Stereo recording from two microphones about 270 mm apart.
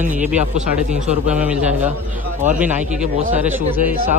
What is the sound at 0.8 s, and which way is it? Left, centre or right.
A man's voice, centre.